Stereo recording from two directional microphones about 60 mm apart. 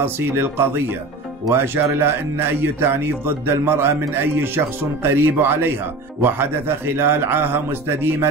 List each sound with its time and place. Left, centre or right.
0.0 s speech: right